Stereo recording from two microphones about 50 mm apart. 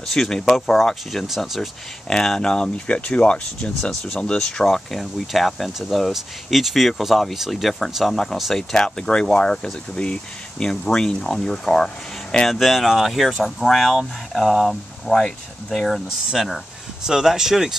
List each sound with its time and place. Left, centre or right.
0.0 s speech: centre
2.0 s speech: centre
4.6 s speech: centre
8.7 s speech: centre
12.4 s speech: centre